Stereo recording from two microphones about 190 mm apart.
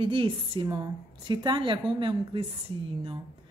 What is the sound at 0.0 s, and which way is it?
A woman's voice, 30° right (ahead or behind).